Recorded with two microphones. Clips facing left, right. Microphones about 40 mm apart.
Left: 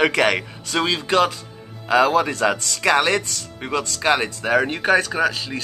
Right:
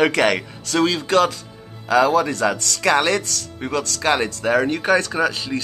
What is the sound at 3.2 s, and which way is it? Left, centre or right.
Speech, centre.